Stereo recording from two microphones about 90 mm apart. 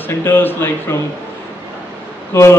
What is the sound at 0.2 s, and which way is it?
Speech, 25° left (ahead or behind).